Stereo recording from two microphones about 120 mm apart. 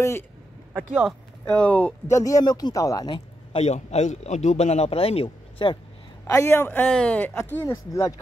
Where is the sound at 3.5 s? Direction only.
65° left (ahead or behind).